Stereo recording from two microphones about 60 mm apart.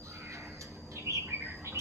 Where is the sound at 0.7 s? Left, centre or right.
Right.